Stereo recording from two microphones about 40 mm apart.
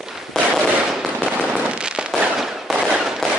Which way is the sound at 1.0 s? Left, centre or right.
Right.